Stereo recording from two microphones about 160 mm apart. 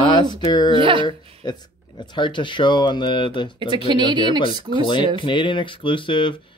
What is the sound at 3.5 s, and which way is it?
Speech, 30° right (ahead or behind).